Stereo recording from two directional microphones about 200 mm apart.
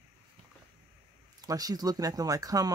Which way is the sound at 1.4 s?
20° right (ahead or behind).